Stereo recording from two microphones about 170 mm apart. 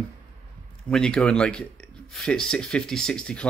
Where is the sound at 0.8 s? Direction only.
5° left (ahead or behind).